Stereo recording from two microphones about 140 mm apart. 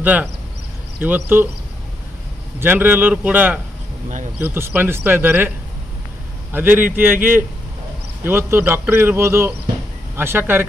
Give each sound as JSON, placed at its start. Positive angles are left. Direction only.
{"t": 0.0, "sound": "a man's voice", "side_deg": -10}
{"t": 2.6, "sound": "a man's voice", "side_deg": -15}
{"t": 6.5, "sound": "a man's voice", "side_deg": -15}